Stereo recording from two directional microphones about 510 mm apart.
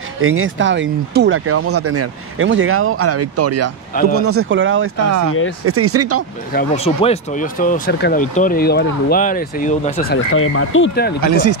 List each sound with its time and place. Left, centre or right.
0.2 s speech: right
6.5 s speech: centre